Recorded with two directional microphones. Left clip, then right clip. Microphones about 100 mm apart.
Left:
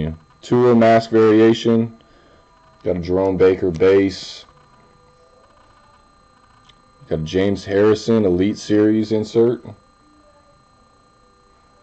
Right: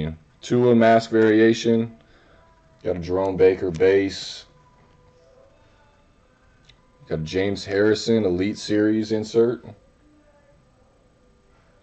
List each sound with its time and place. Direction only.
0.0 s speech: centre (ahead or behind)
3.8 s speech: 20° left (ahead or behind)
7.1 s speech: 5° left (ahead or behind)